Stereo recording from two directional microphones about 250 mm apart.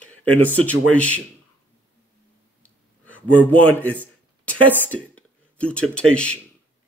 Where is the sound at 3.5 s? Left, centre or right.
Centre.